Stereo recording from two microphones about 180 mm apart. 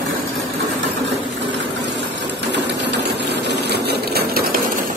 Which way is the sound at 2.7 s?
70° right (ahead or behind).